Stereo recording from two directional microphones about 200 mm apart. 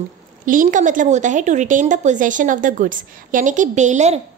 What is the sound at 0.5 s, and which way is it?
A woman's voice, 40° right (ahead or behind).